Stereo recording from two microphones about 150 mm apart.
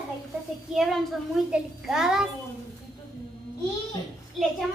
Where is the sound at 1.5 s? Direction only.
5° right (ahead or behind).